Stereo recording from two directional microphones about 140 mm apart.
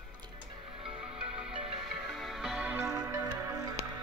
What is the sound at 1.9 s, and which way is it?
Music, centre (ahead or behind).